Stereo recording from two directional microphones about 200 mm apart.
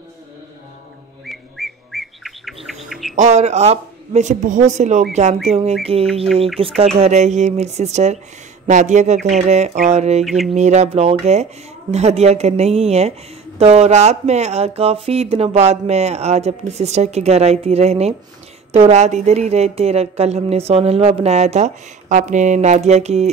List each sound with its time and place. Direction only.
1.2 s bird: centre (ahead or behind)
3.2 s speech: 35° right (ahead or behind)
7.0 s speech: 35° right (ahead or behind)
10.2 s mantra: centre (ahead or behind)
10.5 s speech: 35° right (ahead or behind)